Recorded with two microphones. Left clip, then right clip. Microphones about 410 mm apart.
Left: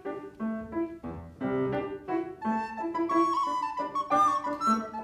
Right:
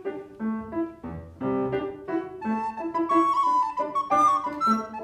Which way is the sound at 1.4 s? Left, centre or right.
Right.